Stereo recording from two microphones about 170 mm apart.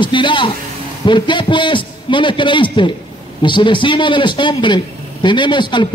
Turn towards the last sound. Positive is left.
turn(degrees=25)  # may be behind; listen again after turning